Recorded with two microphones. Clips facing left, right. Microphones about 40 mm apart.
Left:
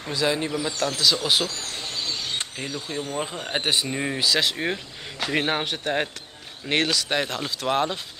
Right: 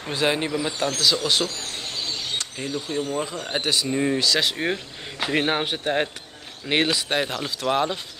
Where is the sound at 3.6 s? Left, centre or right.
Left.